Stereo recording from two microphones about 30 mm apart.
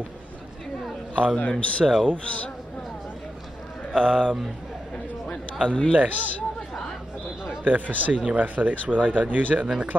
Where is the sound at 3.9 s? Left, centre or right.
Left.